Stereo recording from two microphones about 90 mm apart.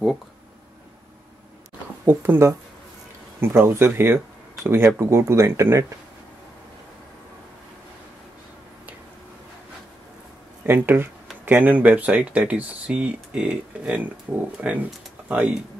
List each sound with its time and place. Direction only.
2.0 s speech: 25° right (ahead or behind)
10.6 s speech: 25° right (ahead or behind)